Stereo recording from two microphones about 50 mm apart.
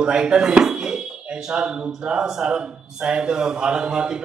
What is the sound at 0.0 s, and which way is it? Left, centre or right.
A man's voice, centre.